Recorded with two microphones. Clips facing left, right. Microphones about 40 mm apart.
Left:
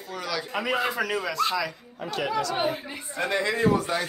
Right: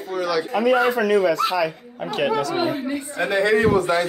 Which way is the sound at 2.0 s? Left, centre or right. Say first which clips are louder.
Right 6 dB; right.